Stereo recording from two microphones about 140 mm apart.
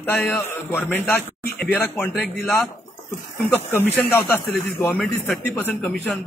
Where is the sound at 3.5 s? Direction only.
15° left (ahead or behind).